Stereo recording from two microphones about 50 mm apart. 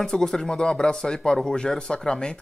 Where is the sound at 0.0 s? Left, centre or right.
Centre.